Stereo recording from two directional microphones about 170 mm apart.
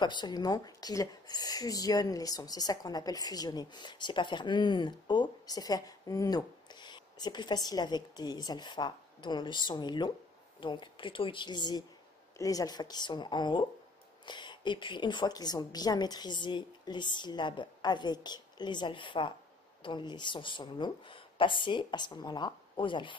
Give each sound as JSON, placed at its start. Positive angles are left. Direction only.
{"t": 0.0, "sound": "speech", "side_deg": 25}